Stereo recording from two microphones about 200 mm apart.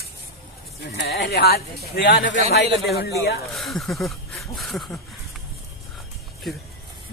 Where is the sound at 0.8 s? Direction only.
50° left (ahead or behind).